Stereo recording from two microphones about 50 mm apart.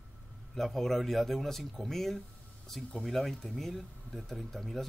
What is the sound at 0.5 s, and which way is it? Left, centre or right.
Speech, centre.